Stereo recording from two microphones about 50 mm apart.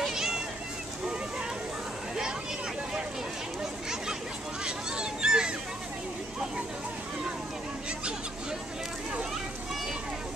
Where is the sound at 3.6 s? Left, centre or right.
Centre.